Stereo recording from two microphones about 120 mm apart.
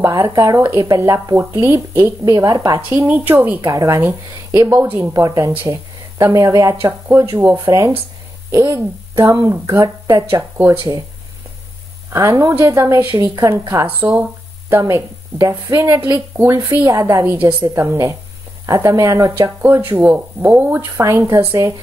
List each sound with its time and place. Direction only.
0.0 s speech: 25° right (ahead or behind)
12.1 s speech: 25° right (ahead or behind)
20.0 s speech: 15° right (ahead or behind)
21.0 s speech: 25° right (ahead or behind)